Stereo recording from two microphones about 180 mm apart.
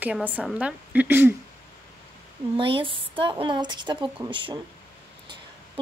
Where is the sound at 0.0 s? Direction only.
10° right (ahead or behind).